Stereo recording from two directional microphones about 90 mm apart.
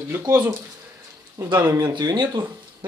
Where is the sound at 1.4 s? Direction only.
35° right (ahead or behind).